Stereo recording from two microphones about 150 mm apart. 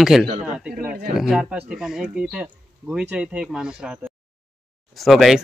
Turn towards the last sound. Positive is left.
turn(degrees=0)  # may be behind; listen again after turning